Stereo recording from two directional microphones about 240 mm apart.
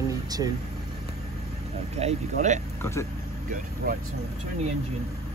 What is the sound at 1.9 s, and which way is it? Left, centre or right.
Speech, right.